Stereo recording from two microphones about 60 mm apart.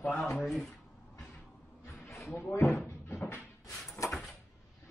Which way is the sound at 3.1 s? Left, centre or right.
Left.